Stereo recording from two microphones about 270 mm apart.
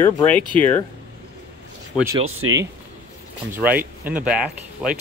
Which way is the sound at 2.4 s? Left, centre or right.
Right.